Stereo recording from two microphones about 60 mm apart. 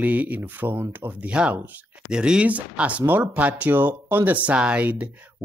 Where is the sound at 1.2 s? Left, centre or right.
Right.